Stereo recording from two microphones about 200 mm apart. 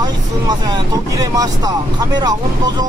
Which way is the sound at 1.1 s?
15° right (ahead or behind).